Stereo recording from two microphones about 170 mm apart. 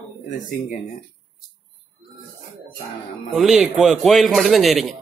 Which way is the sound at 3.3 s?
Centre (ahead or behind).